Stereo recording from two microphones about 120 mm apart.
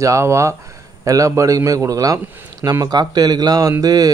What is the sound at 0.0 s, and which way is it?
A man's voice, 25° right (ahead or behind).